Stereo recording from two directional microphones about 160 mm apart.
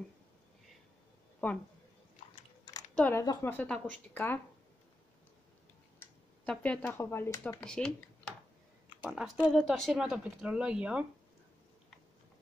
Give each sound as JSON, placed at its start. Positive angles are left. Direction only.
{"t": 1.4, "sound": "a woman's voice", "side_deg": 10}
{"t": 2.3, "sound": "biting", "side_deg": 25}
{"t": 2.9, "sound": "a sound", "side_deg": 5}
{"t": 3.2, "sound": "a woman's voice", "side_deg": 15}
{"t": 5.9, "sound": "speech", "side_deg": 10}
{"t": 7.6, "sound": "speech", "side_deg": 5}